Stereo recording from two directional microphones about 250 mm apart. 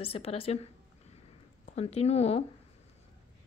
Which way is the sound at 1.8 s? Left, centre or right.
Left.